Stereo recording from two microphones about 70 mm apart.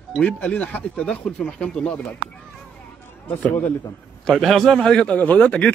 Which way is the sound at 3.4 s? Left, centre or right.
Left.